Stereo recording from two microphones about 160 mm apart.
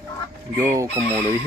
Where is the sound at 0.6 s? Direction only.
15° right (ahead or behind).